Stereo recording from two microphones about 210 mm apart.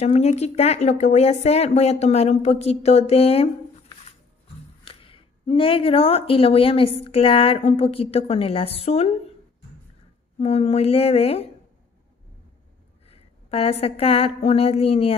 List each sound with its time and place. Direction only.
0.0 s speech: 30° left (ahead or behind)
4.8 s speech: 25° left (ahead or behind)
10.4 s speech: 30° left (ahead or behind)
13.0 s a woman's voice: 30° left (ahead or behind)